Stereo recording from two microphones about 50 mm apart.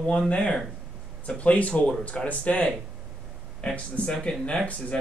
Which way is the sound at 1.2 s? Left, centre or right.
Left.